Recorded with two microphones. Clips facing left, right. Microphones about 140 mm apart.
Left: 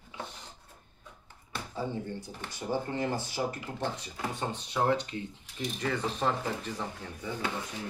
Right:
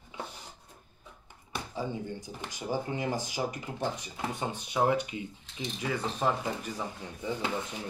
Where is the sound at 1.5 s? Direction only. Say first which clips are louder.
Even; 15° right (ahead or behind).